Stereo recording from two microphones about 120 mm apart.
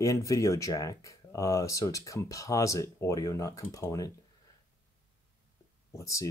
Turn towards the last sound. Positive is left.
turn(degrees=25)  # may be behind; listen again after turning